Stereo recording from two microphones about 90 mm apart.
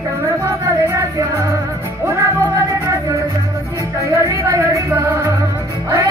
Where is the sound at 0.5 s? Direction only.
35° right (ahead or behind).